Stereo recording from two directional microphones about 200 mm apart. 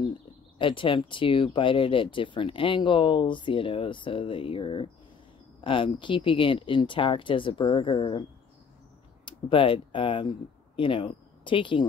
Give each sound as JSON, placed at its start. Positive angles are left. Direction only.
{"t": 0.6, "sound": "speech", "side_deg": 25}